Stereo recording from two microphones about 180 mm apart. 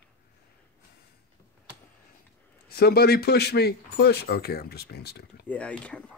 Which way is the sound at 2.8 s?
60° left (ahead or behind).